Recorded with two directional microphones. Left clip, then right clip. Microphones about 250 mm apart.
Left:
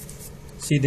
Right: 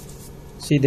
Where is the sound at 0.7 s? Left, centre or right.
Left.